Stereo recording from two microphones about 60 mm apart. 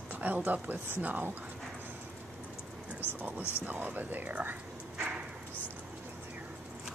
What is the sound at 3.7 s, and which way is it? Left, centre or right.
Speech, right.